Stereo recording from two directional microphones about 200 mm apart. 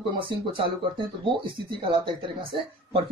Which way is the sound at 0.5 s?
25° right (ahead or behind).